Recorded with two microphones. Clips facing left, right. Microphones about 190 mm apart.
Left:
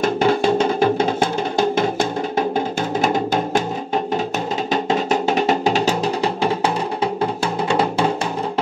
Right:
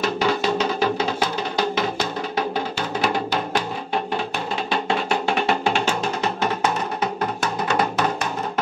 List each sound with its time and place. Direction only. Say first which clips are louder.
0.0 s music: left 5 dB; 50° left (ahead or behind)
4.8 s music: left 4 dB; 40° left (ahead or behind)